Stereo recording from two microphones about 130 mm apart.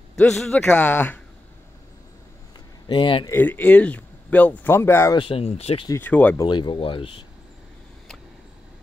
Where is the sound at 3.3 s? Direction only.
15° left (ahead or behind).